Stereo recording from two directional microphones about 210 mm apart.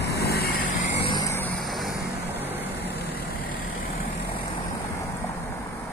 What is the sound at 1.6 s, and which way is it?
Vehicle, centre (ahead or behind).